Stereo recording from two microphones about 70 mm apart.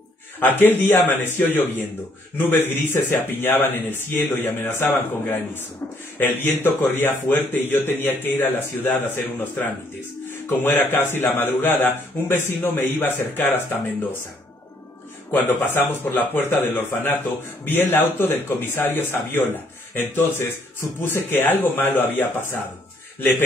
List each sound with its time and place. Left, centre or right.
0.4 s a man's voice: left
15.4 s a man's voice: left